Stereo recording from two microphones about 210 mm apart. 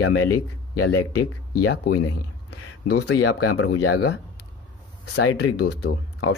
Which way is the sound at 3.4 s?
85° left.